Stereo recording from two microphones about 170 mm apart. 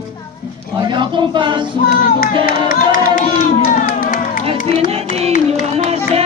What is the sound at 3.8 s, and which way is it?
Run, 55° left (ahead or behind).